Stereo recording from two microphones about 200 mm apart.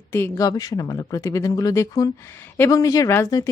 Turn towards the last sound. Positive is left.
turn(degrees=15)  # may be behind; listen again after turning